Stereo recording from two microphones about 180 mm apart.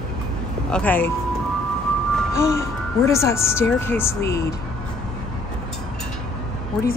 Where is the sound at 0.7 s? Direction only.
10° left (ahead or behind).